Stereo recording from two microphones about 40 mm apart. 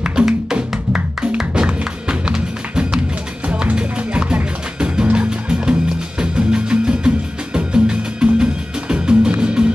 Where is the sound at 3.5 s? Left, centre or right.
Right.